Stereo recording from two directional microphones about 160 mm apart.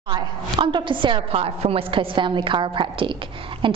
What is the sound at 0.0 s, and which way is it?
A woman's voice, 30° right (ahead or behind).